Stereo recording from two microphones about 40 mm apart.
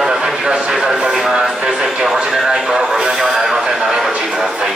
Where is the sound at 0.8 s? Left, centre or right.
Centre.